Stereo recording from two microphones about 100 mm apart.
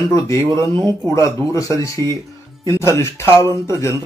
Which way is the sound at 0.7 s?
45° right (ahead or behind).